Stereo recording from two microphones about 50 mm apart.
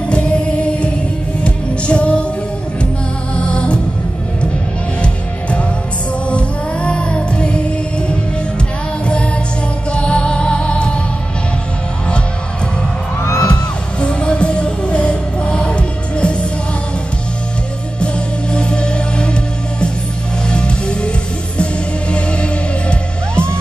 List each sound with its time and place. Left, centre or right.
0.1 s music: left
3.3 s music: left
5.0 s music: left
13.2 s music: left
13.5 s music: left
17.9 s music: centre
20.4 s music: centre
22.1 s music: left